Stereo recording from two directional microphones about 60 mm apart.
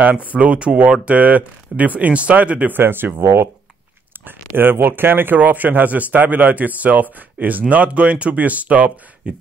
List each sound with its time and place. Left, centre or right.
0.4 s speech: right
2.8 s speech: right
4.6 s speech: right; by 9.4 s centre